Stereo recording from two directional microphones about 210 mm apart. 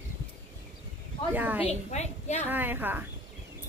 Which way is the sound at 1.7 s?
30° left (ahead or behind).